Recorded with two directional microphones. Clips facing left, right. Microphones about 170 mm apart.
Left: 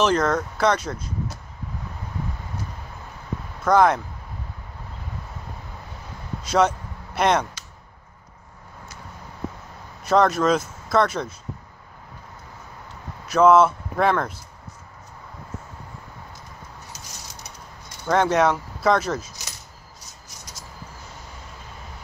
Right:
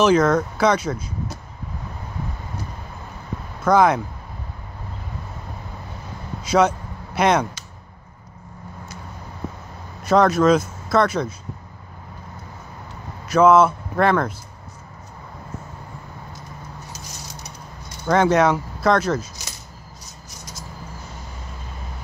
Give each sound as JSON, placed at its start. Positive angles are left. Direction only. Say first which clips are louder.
{"t": 0.0, "sound": "speech", "louder": "right 4 dB", "side_deg": -5}
{"t": 3.6, "sound": "speech", "louder": "right 1 dB", "side_deg": -5}
{"t": 6.4, "sound": "speech", "louder": "right 2 dB", "side_deg": 0}
{"t": 10.0, "sound": "speech", "louder": "right 3 dB", "side_deg": 0}
{"t": 13.2, "sound": "speech", "louder": "right 1 dB", "side_deg": 0}
{"t": 18.0, "sound": "speech", "louder": "right 2 dB", "side_deg": 0}